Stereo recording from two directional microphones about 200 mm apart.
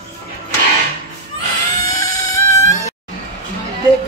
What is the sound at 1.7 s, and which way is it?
Cat, 15° left (ahead or behind).